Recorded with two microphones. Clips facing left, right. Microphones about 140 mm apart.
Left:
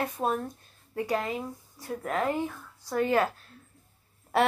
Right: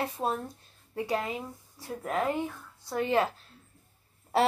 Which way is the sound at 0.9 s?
20° right (ahead or behind).